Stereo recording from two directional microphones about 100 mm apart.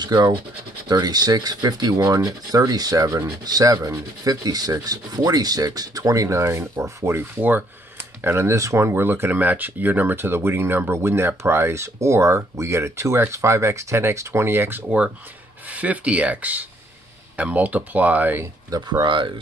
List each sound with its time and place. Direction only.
0.0 s speech: 45° right (ahead or behind)
0.8 s rub: 40° right (ahead or behind)
2.0 s rub: 30° right (ahead or behind)
8.2 s speech: 25° right (ahead or behind)
18.7 s speech: 50° right (ahead or behind)